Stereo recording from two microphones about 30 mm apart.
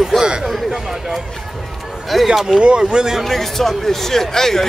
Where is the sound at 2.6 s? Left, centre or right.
Right.